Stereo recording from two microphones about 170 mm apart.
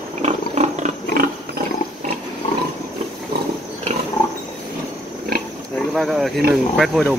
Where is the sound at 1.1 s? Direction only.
60° right (ahead or behind).